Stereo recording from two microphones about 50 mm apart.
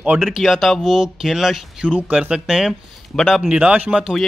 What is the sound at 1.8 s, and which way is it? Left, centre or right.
Speech, right.